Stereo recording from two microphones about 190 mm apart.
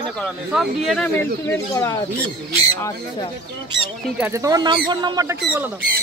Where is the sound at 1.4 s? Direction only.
15° left (ahead or behind).